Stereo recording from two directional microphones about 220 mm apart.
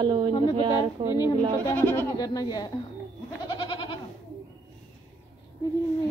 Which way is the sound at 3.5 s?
20° left (ahead or behind).